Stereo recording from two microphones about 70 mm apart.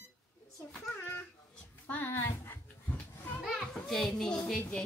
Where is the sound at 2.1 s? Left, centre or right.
Left.